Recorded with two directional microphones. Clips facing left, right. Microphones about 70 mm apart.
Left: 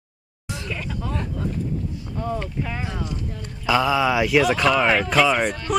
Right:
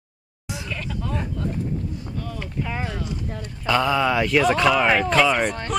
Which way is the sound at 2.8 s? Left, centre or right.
Centre.